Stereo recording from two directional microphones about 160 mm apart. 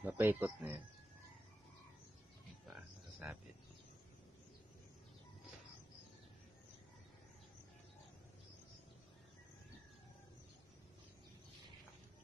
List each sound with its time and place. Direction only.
0.0 s speech: 15° right (ahead or behind)
2.7 s livestock: 10° right (ahead or behind)